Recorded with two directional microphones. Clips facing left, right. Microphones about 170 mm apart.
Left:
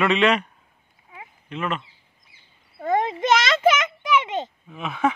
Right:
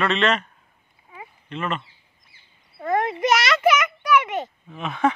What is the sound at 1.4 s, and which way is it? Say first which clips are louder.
Speech: even; 5° left (ahead or behind).